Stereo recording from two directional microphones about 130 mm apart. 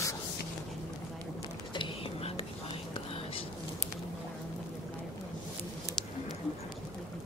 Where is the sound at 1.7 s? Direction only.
40° left (ahead or behind).